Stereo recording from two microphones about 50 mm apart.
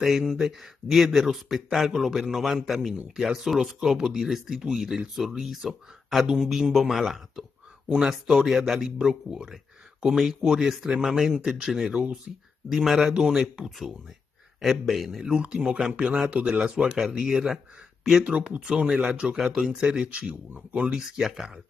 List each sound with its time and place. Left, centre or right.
0.0 s speech: centre
12.6 s speech: centre
14.6 s speech: centre
15.3 s speech: centre
18.2 s speech: right